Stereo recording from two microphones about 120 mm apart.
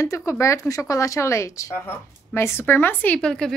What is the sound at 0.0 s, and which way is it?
Speech, 25° left (ahead or behind).